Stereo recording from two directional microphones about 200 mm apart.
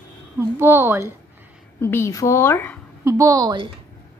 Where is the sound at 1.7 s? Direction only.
10° left (ahead or behind).